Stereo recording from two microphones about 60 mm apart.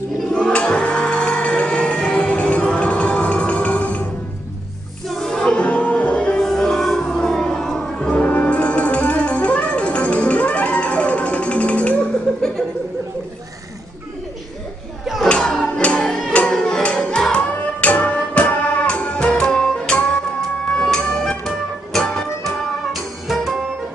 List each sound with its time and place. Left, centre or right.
0.3 s music: centre
5.0 s music: centre
5.6 s music: left; by 8.1 s centre
8.1 s music: left
12.4 s chuckle: centre
15.2 s a sound: centre
15.8 s music: centre